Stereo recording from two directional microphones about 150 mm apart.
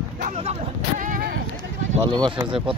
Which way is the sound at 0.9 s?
60° right (ahead or behind).